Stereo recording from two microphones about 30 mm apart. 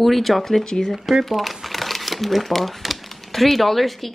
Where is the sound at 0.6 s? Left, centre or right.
Left.